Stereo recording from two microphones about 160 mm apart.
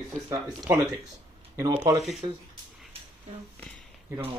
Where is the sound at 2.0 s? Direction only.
Centre (ahead or behind).